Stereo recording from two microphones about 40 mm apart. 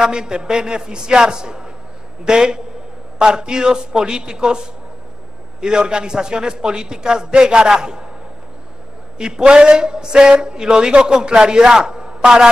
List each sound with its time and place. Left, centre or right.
0.0 s speech: centre
9.2 s speech: right